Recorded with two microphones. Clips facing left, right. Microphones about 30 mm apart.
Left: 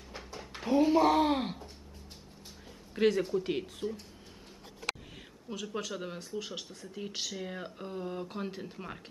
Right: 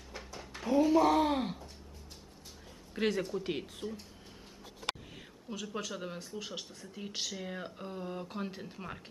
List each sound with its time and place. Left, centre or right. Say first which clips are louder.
0.1 s a sound: left 1 dB; centre
0.7 s speech: left 1 dB; left
2.9 s speech: left 5 dB; centre
5.5 s speech: left 2 dB; centre